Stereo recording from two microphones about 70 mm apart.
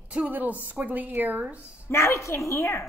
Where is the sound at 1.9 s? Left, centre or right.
Left.